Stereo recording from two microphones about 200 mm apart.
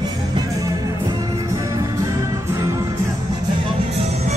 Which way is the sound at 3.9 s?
30° right (ahead or behind).